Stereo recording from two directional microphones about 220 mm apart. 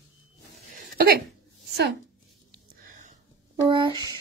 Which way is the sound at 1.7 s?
50° right (ahead or behind).